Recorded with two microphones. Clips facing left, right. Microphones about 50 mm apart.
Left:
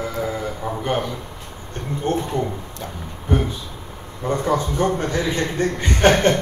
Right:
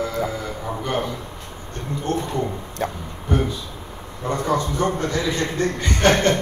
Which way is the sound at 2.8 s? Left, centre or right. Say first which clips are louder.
Right 10 dB; right.